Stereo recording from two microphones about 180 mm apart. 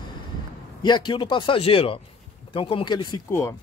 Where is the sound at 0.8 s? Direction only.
25° left (ahead or behind).